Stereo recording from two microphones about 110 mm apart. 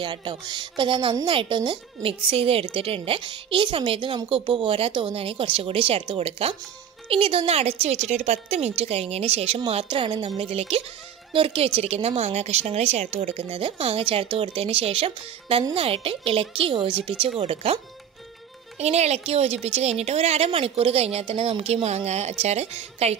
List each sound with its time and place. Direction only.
0.0 s speech: 45° right (ahead or behind)
2.2 s a woman's voice: 60° right (ahead or behind)
7.8 s a woman's voice: 75° right (ahead or behind)
18.8 s a woman's voice: 80° right; by 21.8 s 60° right (ahead or behind)
21.8 s a woman's voice: 85° right